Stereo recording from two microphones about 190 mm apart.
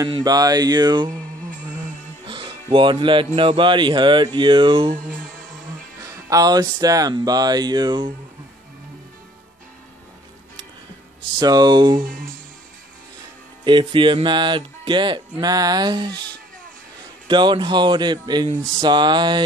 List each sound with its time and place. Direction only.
0.0 s speech: 20° right (ahead or behind)
2.2 s music: 25° right (ahead or behind)
3.3 s speech: 25° right (ahead or behind)
6.0 s speech: 20° right (ahead or behind)
11.3 s speech: 20° right (ahead or behind)
13.7 s speech: 25° right (ahead or behind)
17.3 s speech: 25° right (ahead or behind)